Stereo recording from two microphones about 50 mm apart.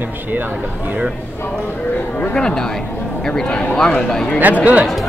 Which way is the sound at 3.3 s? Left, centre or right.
Centre.